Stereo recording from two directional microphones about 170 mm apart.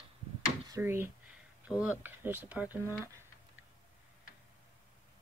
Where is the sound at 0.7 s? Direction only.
15° right (ahead or behind).